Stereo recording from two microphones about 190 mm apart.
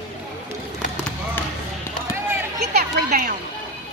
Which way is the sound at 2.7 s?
50° right (ahead or behind).